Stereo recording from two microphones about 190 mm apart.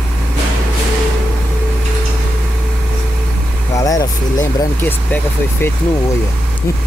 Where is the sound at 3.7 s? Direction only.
20° left (ahead or behind).